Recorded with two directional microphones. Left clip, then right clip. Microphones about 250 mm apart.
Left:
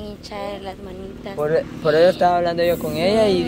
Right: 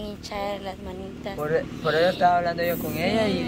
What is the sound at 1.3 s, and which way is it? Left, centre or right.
Speech, left.